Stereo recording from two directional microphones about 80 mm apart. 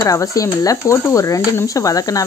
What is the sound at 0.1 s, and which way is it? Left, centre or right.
Speech, left.